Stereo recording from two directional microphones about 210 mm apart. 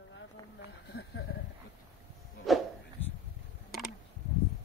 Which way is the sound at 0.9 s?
55° left (ahead or behind).